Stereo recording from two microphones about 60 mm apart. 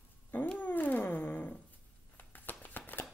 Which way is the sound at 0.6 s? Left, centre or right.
Left.